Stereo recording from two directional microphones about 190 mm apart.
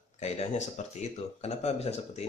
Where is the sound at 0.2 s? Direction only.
35° left (ahead or behind).